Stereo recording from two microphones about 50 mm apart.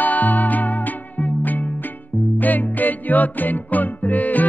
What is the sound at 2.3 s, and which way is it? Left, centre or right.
Music, left.